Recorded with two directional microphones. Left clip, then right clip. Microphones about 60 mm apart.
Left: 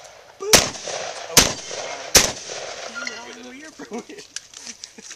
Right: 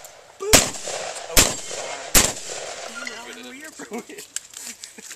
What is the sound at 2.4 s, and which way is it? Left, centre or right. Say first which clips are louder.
Firecracker: left 1 dB; centre.